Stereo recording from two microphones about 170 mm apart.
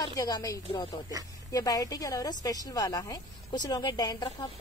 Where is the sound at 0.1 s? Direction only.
20° left (ahead or behind).